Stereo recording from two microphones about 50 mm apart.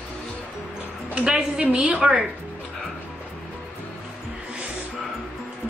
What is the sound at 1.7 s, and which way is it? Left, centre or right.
Speech, right.